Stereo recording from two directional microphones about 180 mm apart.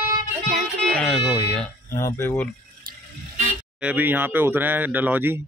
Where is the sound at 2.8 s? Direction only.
55° right (ahead or behind).